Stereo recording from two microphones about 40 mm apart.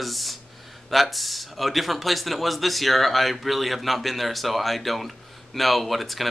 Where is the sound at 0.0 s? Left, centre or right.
Centre.